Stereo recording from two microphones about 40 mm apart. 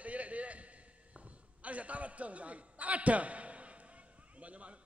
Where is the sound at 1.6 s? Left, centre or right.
Right.